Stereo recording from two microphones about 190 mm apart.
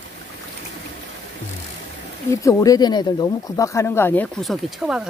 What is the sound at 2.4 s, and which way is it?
Speech, 15° left (ahead or behind).